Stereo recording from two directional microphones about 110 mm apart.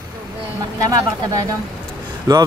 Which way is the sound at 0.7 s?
30° right (ahead or behind).